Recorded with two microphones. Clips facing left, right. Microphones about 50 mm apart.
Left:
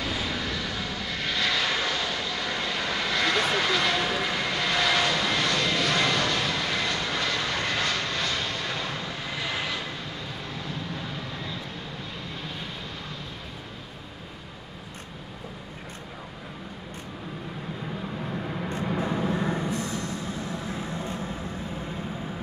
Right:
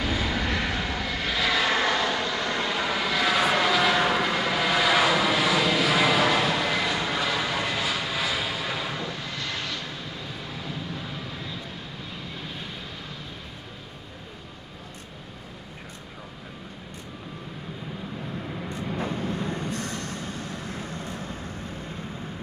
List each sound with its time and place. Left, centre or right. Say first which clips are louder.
0.0 s vehicle: right 3 dB; centre
0.5 s vehicle: right 4 dB; right
0.7 s vehicle: right 3 dB; centre
1.1 s vehicle: right 1 dB; centre
10.2 s vehicle: even; centre
18.9 s vehicle: left 2 dB; left
19.7 s vehicle: left 2 dB; right